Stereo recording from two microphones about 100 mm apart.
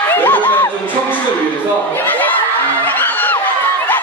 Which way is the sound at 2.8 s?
20° left (ahead or behind).